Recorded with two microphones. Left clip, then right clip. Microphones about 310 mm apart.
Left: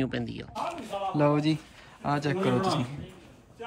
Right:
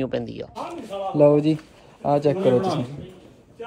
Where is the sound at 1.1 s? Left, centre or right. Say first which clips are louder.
Right 10 dB; left.